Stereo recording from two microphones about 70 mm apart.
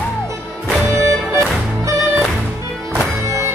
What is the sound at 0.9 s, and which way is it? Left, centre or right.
Music, right.